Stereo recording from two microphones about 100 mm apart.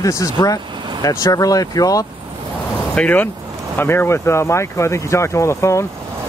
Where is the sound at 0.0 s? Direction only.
35° left (ahead or behind).